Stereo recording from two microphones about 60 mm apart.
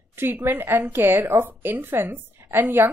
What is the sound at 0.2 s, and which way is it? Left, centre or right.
A woman's voice, right.